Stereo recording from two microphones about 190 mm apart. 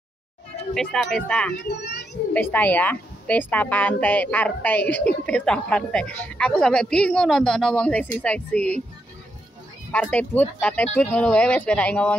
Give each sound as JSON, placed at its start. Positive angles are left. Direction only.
{"t": 0.7, "sound": "a woman's voice", "side_deg": 5}
{"t": 1.6, "sound": "a child's voice", "side_deg": 60}
{"t": 2.5, "sound": "a woman's voice", "side_deg": 10}
{"t": 9.9, "sound": "speech", "side_deg": 10}